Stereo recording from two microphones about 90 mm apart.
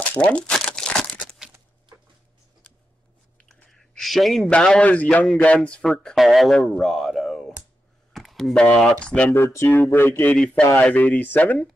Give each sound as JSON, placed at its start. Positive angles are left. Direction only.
{"t": 0.1, "sound": "a man's voice", "side_deg": 15}
{"t": 0.6, "sound": "crumpling", "side_deg": 10}
{"t": 3.4, "sound": "a sound", "side_deg": 5}
{"t": 4.5, "sound": "a man's voice", "side_deg": 10}
{"t": 6.8, "sound": "a sound", "side_deg": 0}
{"t": 8.5, "sound": "a man's voice", "side_deg": 10}
{"t": 9.3, "sound": "speech", "side_deg": 30}
{"t": 10.8, "sound": "speech", "side_deg": 15}